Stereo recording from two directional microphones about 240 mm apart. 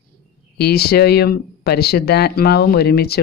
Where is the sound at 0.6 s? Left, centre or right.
Left.